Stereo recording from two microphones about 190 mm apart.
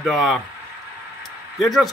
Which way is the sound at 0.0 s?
Centre (ahead or behind).